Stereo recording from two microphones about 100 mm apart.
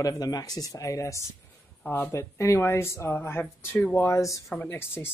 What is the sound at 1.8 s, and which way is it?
Speech, 20° left (ahead or behind).